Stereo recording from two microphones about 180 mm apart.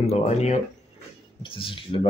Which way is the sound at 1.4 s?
30° left (ahead or behind).